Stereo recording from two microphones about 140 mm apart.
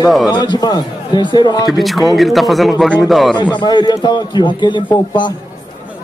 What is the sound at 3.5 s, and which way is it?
A man's voice, 30° left (ahead or behind).